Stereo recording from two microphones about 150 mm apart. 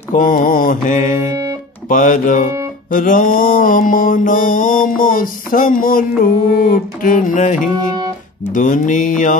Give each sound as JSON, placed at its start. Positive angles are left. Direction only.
{"t": 0.1, "sound": "mantra", "side_deg": 65}
{"t": 1.3, "sound": "music", "side_deg": -20}
{"t": 1.9, "sound": "mantra", "side_deg": 60}